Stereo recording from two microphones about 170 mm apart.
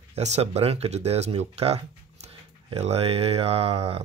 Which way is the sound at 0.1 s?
40° right (ahead or behind).